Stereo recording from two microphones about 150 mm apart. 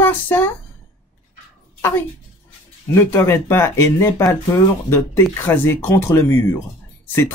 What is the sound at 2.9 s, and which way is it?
Speech, 15° left (ahead or behind).